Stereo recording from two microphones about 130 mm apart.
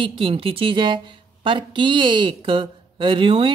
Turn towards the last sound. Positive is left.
turn(degrees=-40)  # may be behind; listen again after turning